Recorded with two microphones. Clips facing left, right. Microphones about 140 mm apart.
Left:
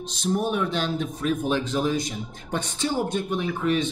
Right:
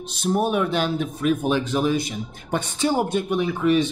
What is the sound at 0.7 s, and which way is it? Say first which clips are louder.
Mantra: right 3 dB; 5° right (ahead or behind).